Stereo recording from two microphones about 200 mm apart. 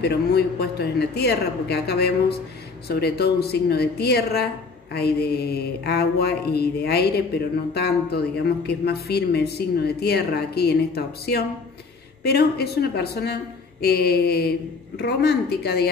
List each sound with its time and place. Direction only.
0.0 s mantra: 55° left (ahead or behind)
12.2 s mantra: 55° left (ahead or behind)